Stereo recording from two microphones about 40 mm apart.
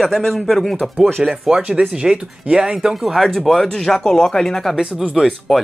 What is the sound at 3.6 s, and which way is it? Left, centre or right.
Speech, centre.